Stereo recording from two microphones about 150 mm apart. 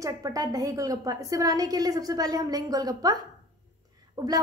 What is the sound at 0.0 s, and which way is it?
A woman's voice, 25° right (ahead or behind).